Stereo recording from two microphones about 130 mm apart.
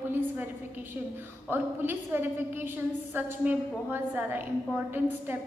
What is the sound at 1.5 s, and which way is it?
A woman's voice, 15° right (ahead or behind).